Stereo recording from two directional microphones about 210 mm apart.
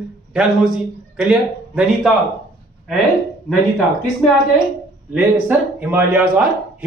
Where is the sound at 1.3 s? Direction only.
Centre (ahead or behind).